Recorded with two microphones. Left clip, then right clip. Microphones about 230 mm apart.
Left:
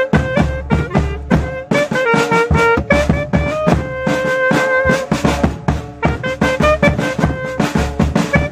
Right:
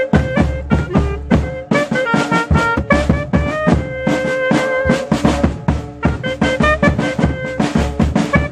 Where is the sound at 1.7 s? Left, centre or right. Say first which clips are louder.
Left 2 dB; left.